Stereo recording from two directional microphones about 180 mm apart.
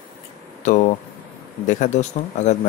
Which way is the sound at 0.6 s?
40° left (ahead or behind).